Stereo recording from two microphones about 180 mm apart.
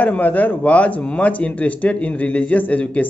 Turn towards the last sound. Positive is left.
turn(degrees=10)  # may be behind; listen again after turning